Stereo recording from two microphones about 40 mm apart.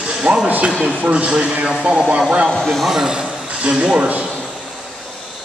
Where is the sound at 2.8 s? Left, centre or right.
Centre; by 4.2 s right.